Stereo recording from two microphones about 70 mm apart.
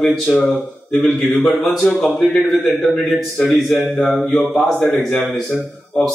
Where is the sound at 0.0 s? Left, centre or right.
Centre.